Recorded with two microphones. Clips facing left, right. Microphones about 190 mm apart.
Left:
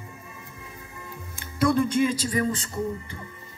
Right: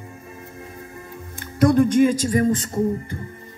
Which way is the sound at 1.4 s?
50° right (ahead or behind).